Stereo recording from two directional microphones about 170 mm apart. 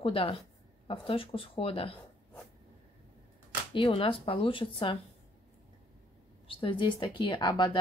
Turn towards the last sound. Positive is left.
turn(degrees=25)  # may be behind; listen again after turning